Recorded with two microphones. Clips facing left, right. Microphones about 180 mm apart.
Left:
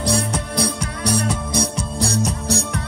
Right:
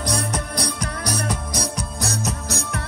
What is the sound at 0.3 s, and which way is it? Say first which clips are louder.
Music: left 4 dB; 30° left (ahead or behind).